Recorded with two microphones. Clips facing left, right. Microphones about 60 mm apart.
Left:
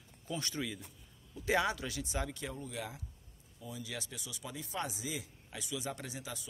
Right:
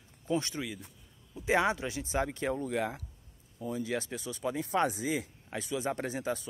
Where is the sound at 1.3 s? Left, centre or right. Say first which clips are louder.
Right 4 dB; right.